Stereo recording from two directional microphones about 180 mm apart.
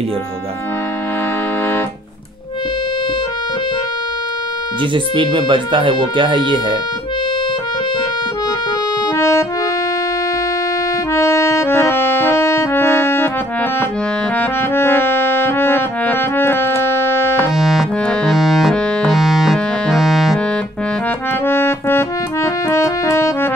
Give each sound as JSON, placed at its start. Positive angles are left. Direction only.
{"t": 4.9, "sound": "speech", "side_deg": -25}
{"t": 9.1, "sound": "accordion", "side_deg": 15}
{"t": 11.1, "sound": "music", "side_deg": 15}
{"t": 14.4, "sound": "brass instrument", "side_deg": 10}
{"t": 17.6, "sound": "music", "side_deg": 0}
{"t": 21.5, "sound": "music", "side_deg": 15}